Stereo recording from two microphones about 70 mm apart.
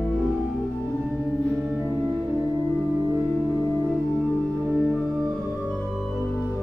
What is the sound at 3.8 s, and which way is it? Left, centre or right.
Organ, centre.